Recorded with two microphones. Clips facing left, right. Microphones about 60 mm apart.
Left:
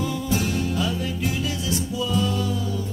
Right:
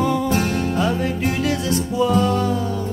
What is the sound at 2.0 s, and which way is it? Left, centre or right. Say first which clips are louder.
Music: right 8 dB; right.